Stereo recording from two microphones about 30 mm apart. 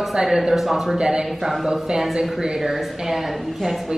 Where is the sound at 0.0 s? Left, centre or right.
Centre.